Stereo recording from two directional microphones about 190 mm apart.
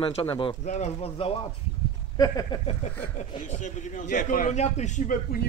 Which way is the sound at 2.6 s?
35° left (ahead or behind).